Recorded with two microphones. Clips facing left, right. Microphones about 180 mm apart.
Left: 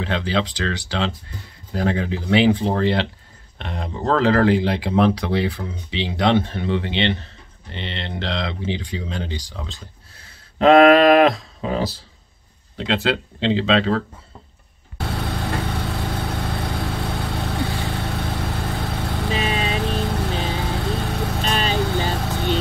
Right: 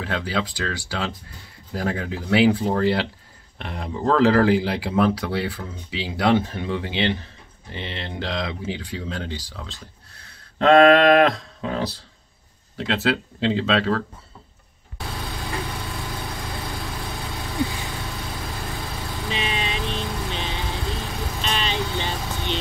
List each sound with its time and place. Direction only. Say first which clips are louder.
0.0 s speech: left 3 dB; 5° right (ahead or behind)
15.0 s vehicle: left 6 dB; 70° left (ahead or behind)
19.2 s vehicle: left 4 dB; 40° left (ahead or behind)
21.0 s vehicle: left 6 dB; 65° left (ahead or behind)
21.4 s vehicle: left 3 dB; 45° left (ahead or behind)